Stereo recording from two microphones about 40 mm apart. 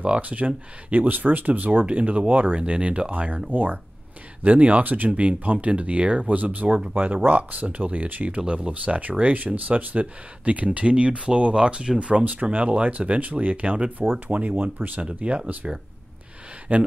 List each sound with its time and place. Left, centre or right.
0.0 s speech: right
1.0 s speech: right
5.1 s speech: right
8.4 s speech: right
12.1 s speech: right
15.0 s speech: right
16.7 s speech: right